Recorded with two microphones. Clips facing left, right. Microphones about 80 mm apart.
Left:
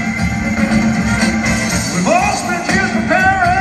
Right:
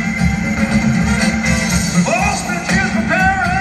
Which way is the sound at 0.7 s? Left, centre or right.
Centre.